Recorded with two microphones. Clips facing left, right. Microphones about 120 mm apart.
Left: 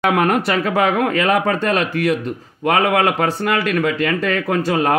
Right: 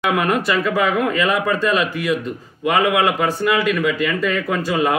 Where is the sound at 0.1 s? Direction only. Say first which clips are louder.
Left 2 dB; 55° left (ahead or behind).